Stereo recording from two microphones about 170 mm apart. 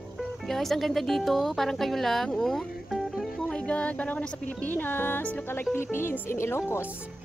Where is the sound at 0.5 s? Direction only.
Centre (ahead or behind).